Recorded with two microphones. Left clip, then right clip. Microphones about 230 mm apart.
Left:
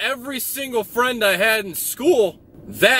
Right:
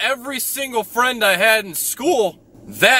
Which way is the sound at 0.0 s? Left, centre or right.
Right.